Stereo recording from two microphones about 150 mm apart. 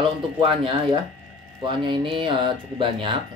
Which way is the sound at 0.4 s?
35° right (ahead or behind).